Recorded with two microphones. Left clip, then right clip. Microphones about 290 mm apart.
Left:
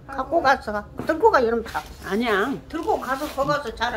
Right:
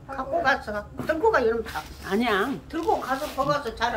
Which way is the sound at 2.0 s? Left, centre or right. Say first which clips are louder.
Left 2 dB; centre.